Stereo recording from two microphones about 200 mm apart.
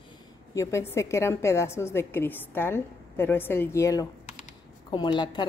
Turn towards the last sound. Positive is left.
turn(degrees=20)  # may be behind; listen again after turning